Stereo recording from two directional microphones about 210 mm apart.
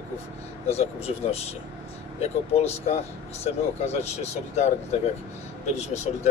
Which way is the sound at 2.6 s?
30° left (ahead or behind).